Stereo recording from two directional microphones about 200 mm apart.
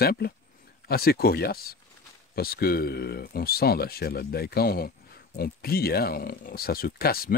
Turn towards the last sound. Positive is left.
turn(degrees=50)  # may be behind; listen again after turning